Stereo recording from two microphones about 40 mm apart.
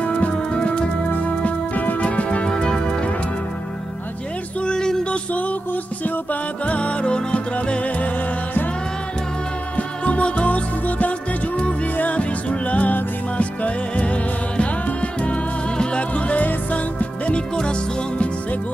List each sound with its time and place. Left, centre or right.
0.0 s music: left
1.4 s music: left
2.2 s music: left
4.6 s music: left
5.1 s music: left
9.8 s music: left
17.6 s music: left